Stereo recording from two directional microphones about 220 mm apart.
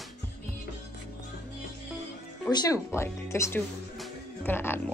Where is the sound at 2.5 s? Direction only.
15° left (ahead or behind).